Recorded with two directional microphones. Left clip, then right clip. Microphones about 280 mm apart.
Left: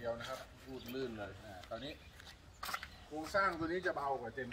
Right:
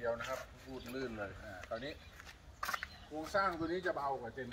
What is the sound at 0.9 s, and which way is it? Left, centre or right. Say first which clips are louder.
Speech: right 1 dB; centre.